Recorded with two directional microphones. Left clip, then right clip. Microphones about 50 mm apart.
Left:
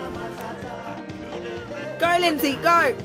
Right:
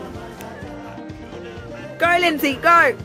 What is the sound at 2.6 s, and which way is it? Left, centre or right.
Speech, centre.